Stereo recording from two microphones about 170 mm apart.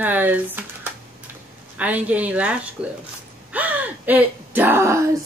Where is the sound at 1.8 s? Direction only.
10° right (ahead or behind).